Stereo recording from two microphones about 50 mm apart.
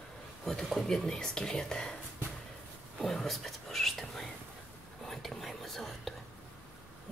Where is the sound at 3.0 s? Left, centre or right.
Centre.